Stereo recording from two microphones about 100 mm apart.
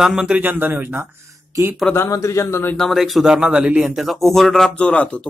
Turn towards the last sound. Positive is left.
turn(degrees=10)  # may be behind; listen again after turning